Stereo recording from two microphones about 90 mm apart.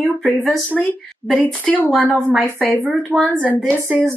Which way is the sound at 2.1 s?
15° right (ahead or behind).